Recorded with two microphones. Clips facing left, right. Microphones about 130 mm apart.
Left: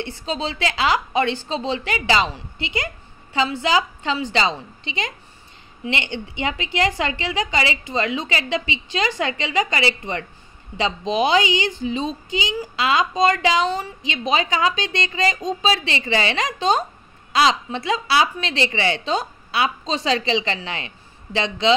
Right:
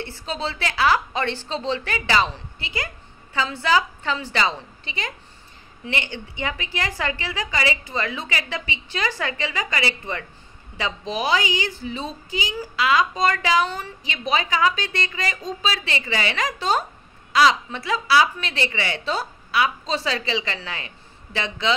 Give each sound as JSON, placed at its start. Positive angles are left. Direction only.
{"t": 0.0, "sound": "a woman's voice", "side_deg": 20}